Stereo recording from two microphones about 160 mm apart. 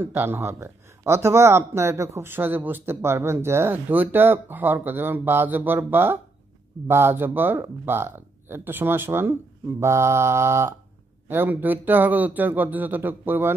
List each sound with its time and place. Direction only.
0.0 s speech: 15° right (ahead or behind)